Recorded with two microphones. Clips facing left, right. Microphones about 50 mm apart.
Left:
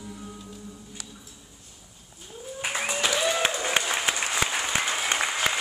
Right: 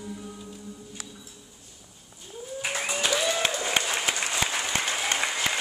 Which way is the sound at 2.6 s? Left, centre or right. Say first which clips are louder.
Left 1 dB; centre.